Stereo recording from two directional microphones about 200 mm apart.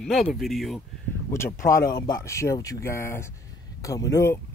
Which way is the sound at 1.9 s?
15° left (ahead or behind).